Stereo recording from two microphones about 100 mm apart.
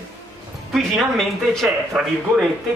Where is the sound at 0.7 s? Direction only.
Centre (ahead or behind).